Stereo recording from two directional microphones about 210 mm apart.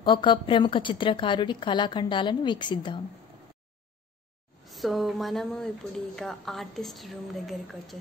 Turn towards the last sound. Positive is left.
turn(degrees=0)  # may be behind; listen again after turning